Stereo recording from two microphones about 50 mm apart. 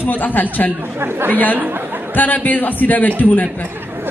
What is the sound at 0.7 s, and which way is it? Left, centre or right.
Speech, right.